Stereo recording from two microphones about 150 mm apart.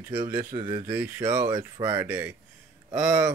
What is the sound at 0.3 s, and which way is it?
Speech, 20° right (ahead or behind).